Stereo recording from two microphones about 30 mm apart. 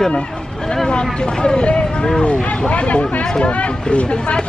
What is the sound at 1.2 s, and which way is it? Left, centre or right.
Speech, left.